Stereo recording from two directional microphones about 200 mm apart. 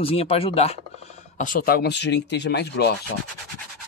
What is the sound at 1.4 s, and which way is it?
Speech, 45° left (ahead or behind).